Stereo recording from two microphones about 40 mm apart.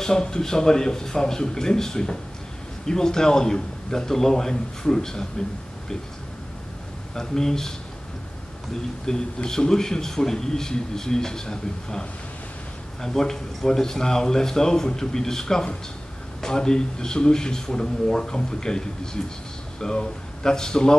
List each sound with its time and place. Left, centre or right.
0.0 s a man's voice: centre
7.2 s a man's voice: centre
9.0 s a man's voice: centre
19.8 s speech: centre